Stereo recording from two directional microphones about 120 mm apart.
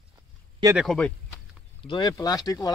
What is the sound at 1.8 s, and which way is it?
Speech, 35° left (ahead or behind).